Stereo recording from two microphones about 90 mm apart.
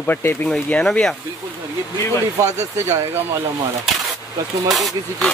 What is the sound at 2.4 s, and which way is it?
Speech, 35° right (ahead or behind).